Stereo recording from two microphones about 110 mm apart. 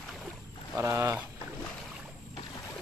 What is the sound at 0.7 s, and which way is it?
Speech, 20° right (ahead or behind).